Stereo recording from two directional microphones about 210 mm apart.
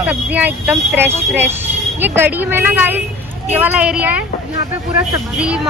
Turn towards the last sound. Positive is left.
turn(degrees=-5)  # may be behind; listen again after turning